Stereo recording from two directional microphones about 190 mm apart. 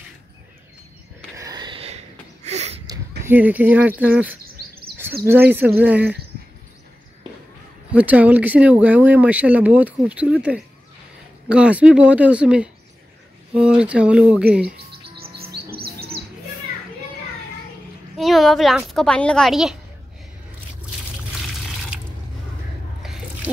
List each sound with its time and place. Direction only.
1.3 s a sound: 20° right (ahead or behind); by 2.8 s 35° right (ahead or behind)
3.3 s speech: 10° right (ahead or behind)
7.9 s speech: 10° right (ahead or behind)
15.3 s chirp: 55° right (ahead or behind)
18.1 s a woman's voice: centre (ahead or behind)
23.0 s a sound: centre (ahead or behind)